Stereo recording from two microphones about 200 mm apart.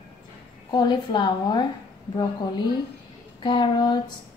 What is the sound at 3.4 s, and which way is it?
Speech, 20° left (ahead or behind).